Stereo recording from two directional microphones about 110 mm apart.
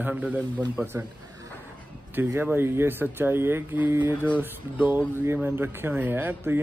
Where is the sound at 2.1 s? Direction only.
20° right (ahead or behind).